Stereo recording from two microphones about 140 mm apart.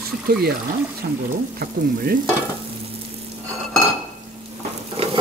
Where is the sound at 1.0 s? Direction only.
90° right.